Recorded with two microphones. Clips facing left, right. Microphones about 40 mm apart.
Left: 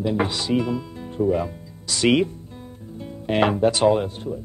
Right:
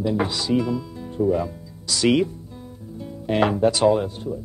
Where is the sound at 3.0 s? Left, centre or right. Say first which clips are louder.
Even; left.